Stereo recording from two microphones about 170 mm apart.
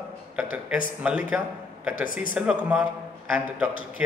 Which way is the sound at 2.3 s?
5° right (ahead or behind).